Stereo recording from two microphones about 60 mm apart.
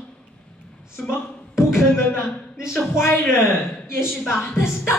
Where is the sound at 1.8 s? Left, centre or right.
Left.